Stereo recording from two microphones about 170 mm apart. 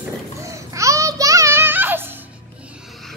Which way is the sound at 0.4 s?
20° right (ahead or behind).